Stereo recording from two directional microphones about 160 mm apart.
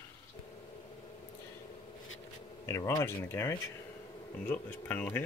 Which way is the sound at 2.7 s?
15° left (ahead or behind).